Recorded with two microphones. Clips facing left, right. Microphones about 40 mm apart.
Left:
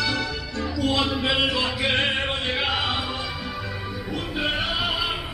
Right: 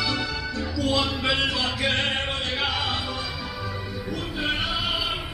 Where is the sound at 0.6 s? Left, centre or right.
Centre.